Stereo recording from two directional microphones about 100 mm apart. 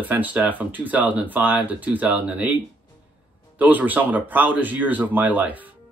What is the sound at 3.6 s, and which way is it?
Speech, 15° right (ahead or behind).